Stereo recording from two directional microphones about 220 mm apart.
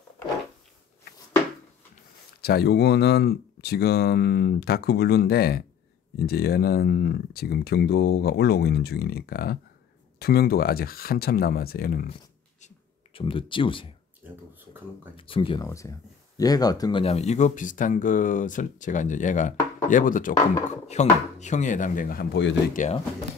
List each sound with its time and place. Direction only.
2.4 s speech: 45° left (ahead or behind)
12.6 s speech: 25° left (ahead or behind)
14.2 s speech: 10° right (ahead or behind)
15.1 s speech: 25° left (ahead or behind); by 22.6 s 55° left (ahead or behind)
22.8 s speech: 35° left (ahead or behind)